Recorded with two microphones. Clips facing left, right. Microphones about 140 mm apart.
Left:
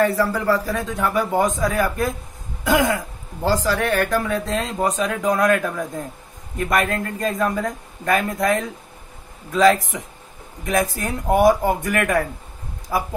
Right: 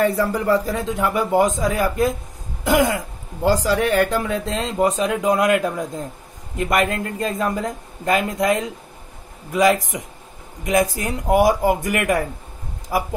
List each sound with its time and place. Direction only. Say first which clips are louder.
0.0 s speech: even; 20° right (ahead or behind)